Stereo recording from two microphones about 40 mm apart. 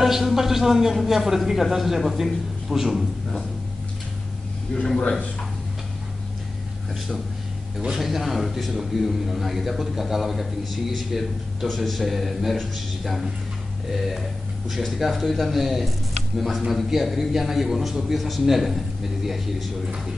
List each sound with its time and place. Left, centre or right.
0.0 s speech: centre
4.7 s speech: left
7.8 s a man's voice: centre